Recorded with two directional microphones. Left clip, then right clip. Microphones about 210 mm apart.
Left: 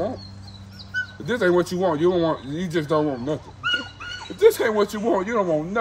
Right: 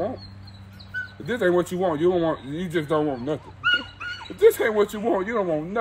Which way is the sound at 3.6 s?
55° left (ahead or behind).